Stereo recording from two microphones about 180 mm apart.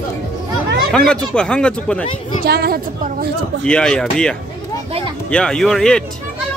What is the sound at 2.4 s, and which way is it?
Speech, 60° right (ahead or behind).